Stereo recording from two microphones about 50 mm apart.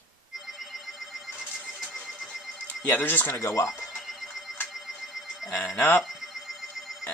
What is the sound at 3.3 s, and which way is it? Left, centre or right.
Speech, left.